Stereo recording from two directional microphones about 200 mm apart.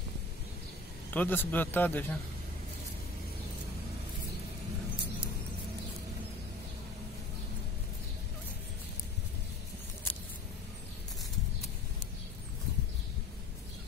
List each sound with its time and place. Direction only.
1.1 s speech: 10° left (ahead or behind)